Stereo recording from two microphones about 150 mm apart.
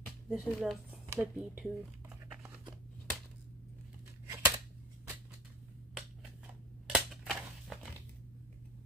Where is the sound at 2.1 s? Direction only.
5° right (ahead or behind).